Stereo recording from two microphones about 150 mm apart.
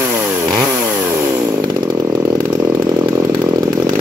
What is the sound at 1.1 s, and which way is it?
Chainsaw, 25° right (ahead or behind).